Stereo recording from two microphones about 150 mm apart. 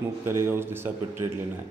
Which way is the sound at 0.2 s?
15° right (ahead or behind).